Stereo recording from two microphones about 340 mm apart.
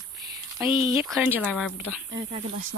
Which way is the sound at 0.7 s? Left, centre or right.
Left.